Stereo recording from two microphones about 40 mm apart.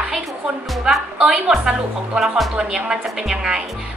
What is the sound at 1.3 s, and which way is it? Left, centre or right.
A woman's voice, centre.